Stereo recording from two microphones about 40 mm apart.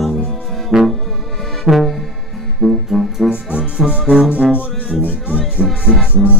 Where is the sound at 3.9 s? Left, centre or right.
Centre.